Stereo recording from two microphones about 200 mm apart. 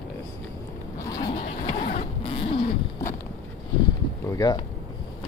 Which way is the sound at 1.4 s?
35° left (ahead or behind).